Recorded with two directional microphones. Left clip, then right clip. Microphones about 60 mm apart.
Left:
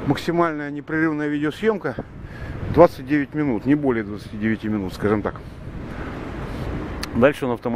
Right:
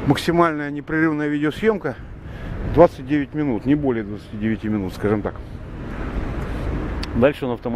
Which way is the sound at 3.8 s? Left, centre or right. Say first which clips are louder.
Even; left.